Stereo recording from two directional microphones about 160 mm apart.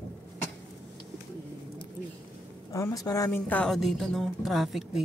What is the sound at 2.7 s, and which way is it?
Speech, 20° left (ahead or behind).